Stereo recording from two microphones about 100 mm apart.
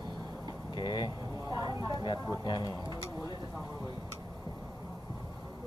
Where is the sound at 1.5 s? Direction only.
40° right (ahead or behind).